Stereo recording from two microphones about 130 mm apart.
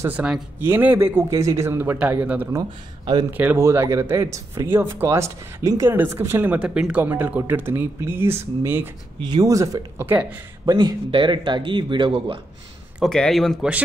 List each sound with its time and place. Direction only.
0.0 s speech: 10° right (ahead or behind)
9.2 s speech: 30° right (ahead or behind); by 10.4 s 15° right (ahead or behind)
10.6 s speech: 30° right (ahead or behind)
13.0 s speech: 5° left (ahead or behind)